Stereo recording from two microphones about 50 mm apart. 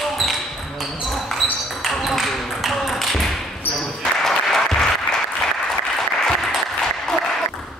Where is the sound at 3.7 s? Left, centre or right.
Centre.